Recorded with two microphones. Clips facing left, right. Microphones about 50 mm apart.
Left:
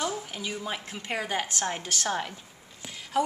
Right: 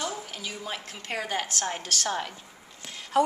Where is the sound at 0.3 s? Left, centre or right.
Centre.